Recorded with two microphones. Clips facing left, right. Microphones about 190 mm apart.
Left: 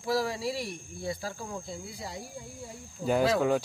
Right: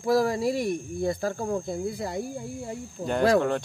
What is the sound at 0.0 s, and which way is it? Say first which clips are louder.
Speech: right 7 dB; 50° right (ahead or behind).